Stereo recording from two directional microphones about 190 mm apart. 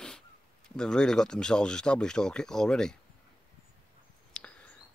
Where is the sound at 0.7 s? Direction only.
5° left (ahead or behind).